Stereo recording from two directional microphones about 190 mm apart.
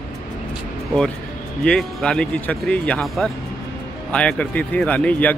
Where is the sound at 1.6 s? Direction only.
5° left (ahead or behind).